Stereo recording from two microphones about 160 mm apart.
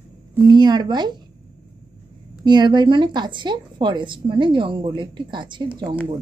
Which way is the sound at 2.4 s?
30° right (ahead or behind).